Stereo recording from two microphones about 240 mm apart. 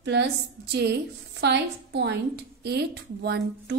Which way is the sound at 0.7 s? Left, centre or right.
Right.